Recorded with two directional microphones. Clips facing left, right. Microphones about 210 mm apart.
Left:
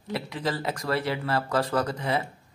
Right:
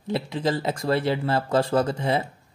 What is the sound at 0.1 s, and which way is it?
Speech, 25° right (ahead or behind).